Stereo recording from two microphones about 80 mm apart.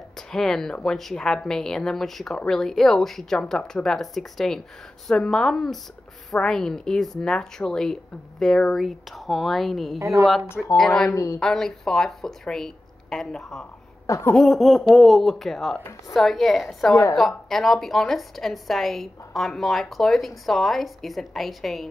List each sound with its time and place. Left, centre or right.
0.3 s a woman's voice: centre
9.9 s a woman's voice: right
10.8 s a woman's voice: centre
11.1 s a woman's voice: left
11.3 s a woman's voice: centre